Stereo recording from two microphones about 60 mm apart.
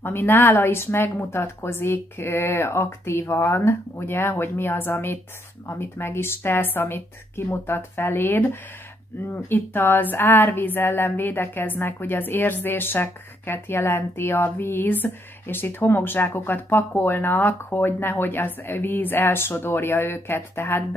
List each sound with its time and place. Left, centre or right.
0.0 s speech: left